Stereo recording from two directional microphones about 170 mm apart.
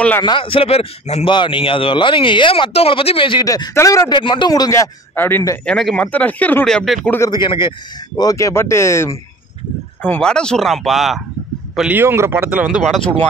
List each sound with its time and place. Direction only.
0.2 s speech: 30° left (ahead or behind)
4.1 s speech: 30° left (ahead or behind)
5.7 s speech: 5° left (ahead or behind)
7.2 s speech: 25° left (ahead or behind); by 13.3 s 5° left (ahead or behind)